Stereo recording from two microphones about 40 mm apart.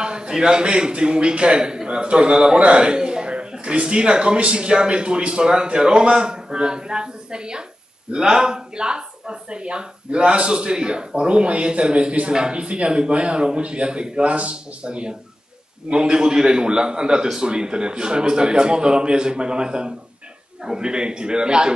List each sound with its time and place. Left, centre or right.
0.0 s a man's voice: right